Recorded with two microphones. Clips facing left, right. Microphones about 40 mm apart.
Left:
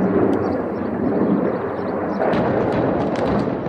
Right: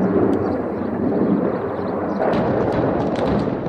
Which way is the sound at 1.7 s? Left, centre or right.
Centre.